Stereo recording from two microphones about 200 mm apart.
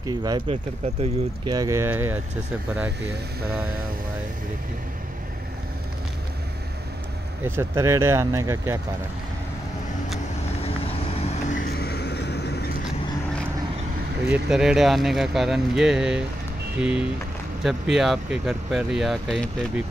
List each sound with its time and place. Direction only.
0.0 s speech: 20° right (ahead or behind)
7.4 s speech: 15° right (ahead or behind)
11.1 s vehicle: 40° left (ahead or behind); by 12.7 s 55° left (ahead or behind)
14.3 s speech: 5° right (ahead or behind)